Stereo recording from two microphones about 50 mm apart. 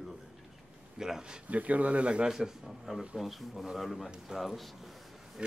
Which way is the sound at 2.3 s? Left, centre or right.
Centre.